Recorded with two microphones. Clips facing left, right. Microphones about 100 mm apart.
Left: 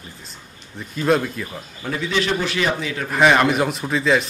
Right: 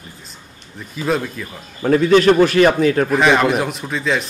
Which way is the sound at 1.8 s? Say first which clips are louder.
Right 11 dB; 50° right (ahead or behind).